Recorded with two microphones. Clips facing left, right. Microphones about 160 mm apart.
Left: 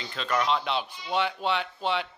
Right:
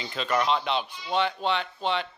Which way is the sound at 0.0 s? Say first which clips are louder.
Right 2 dB; 5° right (ahead or behind).